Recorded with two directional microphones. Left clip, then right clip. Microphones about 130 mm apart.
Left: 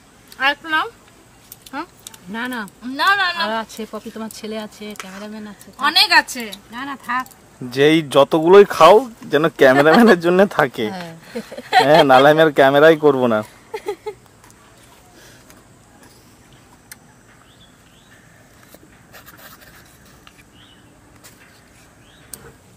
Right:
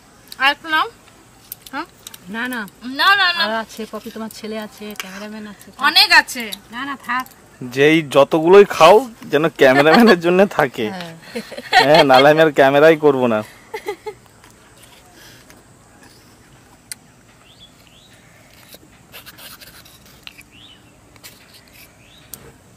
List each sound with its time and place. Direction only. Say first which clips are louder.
0.3 s speech: right 2 dB; 5° right (ahead or behind)
1.6 s keys jangling: right 1 dB; centre (ahead or behind)
2.3 s speech: right 1 dB; 10° left (ahead or behind)
2.8 s speech: right 3 dB; centre (ahead or behind)
3.4 s speech: right 1 dB; 15° left (ahead or behind)
7.6 s speech: right 1 dB; centre (ahead or behind)
19.1 s a sound: right 4 dB; centre (ahead or behind)